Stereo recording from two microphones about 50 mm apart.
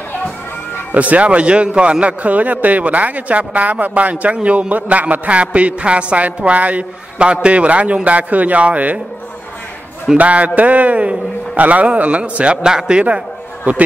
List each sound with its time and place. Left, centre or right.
0.9 s a man's voice: right
10.1 s a man's voice: right
13.7 s a man's voice: right